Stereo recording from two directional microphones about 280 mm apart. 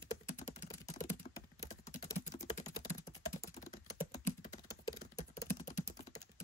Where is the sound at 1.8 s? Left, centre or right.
Left.